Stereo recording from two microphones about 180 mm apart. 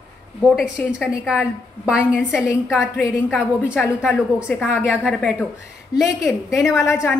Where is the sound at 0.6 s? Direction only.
5° right (ahead or behind).